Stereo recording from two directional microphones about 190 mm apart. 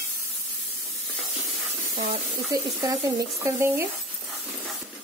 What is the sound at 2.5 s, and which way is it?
Speech, 20° right (ahead or behind).